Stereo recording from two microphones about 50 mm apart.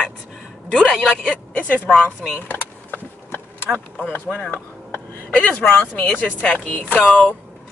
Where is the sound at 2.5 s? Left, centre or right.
Left.